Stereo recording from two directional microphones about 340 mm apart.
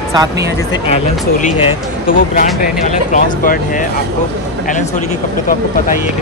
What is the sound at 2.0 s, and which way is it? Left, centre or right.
Speech, left.